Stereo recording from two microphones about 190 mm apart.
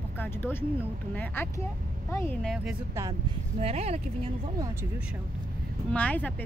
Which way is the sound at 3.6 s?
35° right (ahead or behind).